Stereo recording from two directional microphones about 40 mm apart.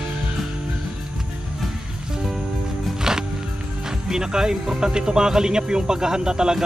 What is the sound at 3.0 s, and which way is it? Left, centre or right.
Music, centre.